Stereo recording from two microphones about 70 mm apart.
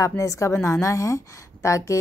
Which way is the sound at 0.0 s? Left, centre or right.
Left.